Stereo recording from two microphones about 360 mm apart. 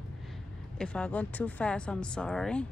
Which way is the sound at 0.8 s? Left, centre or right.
Centre.